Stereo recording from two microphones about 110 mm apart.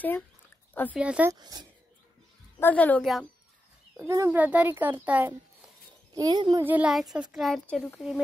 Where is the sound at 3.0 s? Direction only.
Centre (ahead or behind).